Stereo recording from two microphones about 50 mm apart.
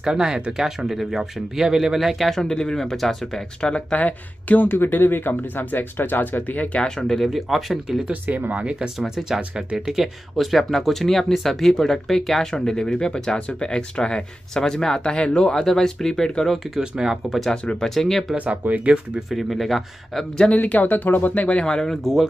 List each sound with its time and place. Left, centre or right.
0.0 s speech: centre
3.6 s speech: left
4.6 s speech: left
7.0 s speech: centre
8.1 s speech: right
8.8 s speech: centre
16.9 s speech: centre
17.3 s speech: centre
18.3 s speech: right
19.1 s speech: centre
20.5 s speech: left
21.6 s speech: centre